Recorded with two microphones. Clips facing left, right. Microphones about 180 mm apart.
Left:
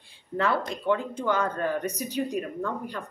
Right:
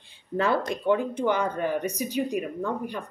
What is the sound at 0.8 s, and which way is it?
Speech, 15° right (ahead or behind).